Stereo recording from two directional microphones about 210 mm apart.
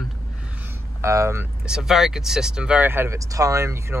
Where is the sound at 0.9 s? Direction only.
15° right (ahead or behind).